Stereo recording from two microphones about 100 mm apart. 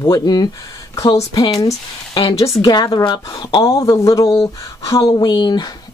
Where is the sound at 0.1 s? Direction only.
40° left (ahead or behind).